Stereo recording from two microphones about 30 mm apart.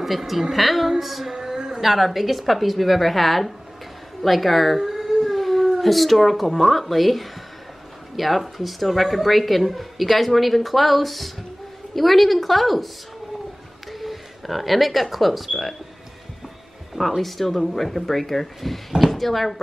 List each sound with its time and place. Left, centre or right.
0.0 s a woman's voice: centre
1.4 s a sound: centre
1.8 s a woman's voice: centre
13.9 s speech: centre
17.2 s a woman's voice: centre